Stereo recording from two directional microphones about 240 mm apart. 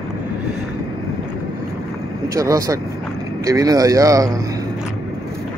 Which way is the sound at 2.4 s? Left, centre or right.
Centre.